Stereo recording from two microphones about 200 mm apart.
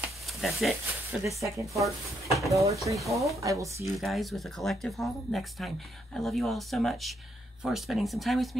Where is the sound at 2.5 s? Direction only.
15° right (ahead or behind).